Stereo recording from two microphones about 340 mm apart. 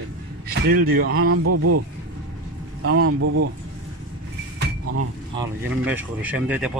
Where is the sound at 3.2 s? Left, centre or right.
Right.